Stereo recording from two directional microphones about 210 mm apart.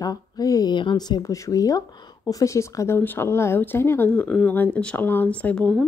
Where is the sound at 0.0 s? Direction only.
15° left (ahead or behind).